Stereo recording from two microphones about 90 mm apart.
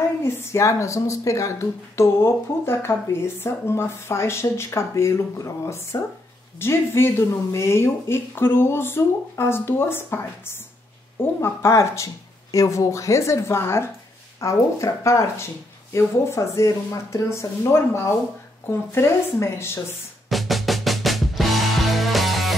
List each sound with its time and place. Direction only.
0.2 s speech: 30° left (ahead or behind)
20.2 s music: centre (ahead or behind)